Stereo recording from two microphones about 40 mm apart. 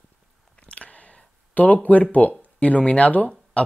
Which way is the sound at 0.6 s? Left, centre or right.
Left.